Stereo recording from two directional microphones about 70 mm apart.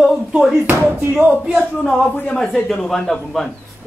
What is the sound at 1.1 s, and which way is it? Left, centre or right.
Speech, centre.